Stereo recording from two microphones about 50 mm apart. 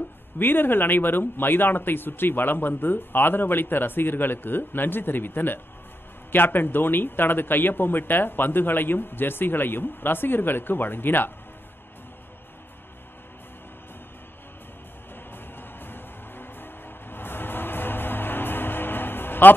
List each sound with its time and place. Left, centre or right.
0.4 s speech: left
15.3 s music: left